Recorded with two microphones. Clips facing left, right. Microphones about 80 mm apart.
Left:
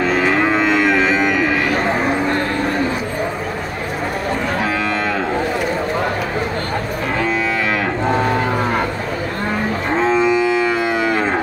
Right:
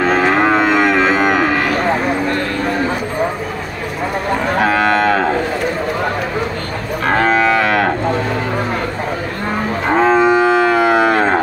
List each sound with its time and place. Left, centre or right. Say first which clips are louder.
0.0 s cattle: right 3 dB; right
4.6 s moo: right 6 dB; right
7.1 s moo: right 8 dB; right
9.9 s moo: right 4 dB; right